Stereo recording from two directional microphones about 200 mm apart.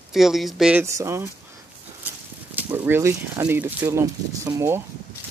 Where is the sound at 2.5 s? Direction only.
10° right (ahead or behind).